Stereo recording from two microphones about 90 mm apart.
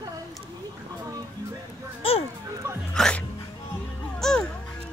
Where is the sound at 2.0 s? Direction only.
90° left.